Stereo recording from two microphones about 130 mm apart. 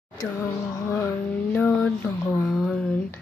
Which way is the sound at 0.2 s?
25° left (ahead or behind).